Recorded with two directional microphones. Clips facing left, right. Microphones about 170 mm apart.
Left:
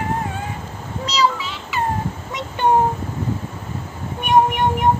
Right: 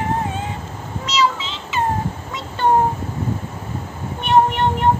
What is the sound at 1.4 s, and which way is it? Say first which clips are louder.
Child singing: even; 20° right (ahead or behind).